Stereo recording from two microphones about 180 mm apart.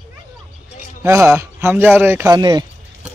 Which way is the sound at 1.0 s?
15° right (ahead or behind).